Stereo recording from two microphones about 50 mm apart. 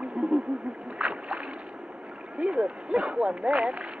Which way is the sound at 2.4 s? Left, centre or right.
Centre.